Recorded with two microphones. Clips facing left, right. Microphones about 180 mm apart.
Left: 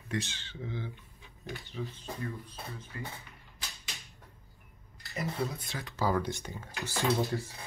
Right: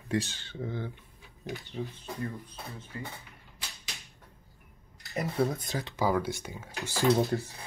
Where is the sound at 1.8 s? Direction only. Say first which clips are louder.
Right 2 dB; 40° right (ahead or behind).